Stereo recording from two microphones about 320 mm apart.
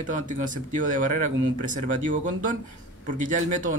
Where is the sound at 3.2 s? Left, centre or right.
Right.